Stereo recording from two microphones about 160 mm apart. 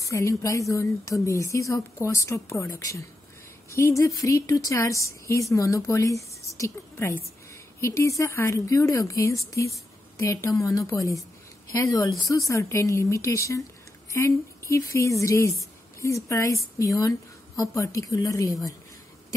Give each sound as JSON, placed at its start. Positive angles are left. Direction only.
{"t": 0.0, "sound": "a woman's voice", "side_deg": 20}